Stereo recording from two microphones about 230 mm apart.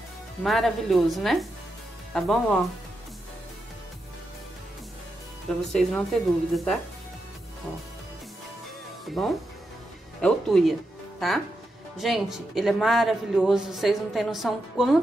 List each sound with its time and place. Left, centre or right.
0.4 s speech: centre
5.6 s speech: centre
9.0 s speech: centre